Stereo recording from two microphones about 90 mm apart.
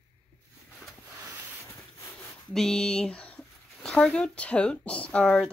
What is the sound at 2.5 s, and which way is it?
Speech, 5° left (ahead or behind).